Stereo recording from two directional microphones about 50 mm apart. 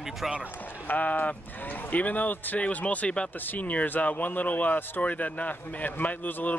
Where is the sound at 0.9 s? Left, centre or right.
Left.